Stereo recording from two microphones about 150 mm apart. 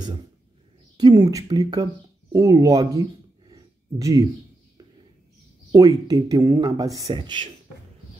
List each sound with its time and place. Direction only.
0.9 s speech: 25° right (ahead or behind)
5.7 s speech: 20° right (ahead or behind)